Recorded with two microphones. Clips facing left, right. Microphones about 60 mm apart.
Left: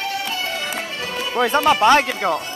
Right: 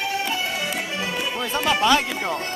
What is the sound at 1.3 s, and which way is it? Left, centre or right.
Speech, left.